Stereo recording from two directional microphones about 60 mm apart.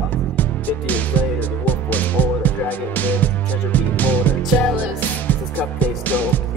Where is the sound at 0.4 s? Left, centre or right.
Left.